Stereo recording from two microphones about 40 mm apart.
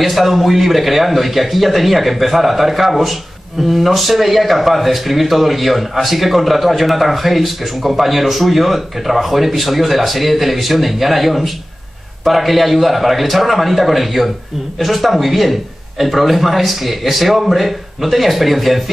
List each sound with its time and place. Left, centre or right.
0.0 s speech: centre